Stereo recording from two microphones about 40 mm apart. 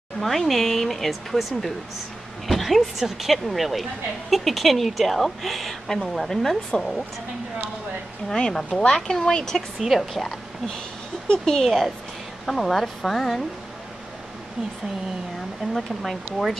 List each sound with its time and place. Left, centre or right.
0.2 s a woman's voice: centre
2.4 s a woman's voice: centre
8.4 s speech: centre
9.8 s a woman's voice: centre
11.2 s speech: centre
15.7 s a woman's voice: centre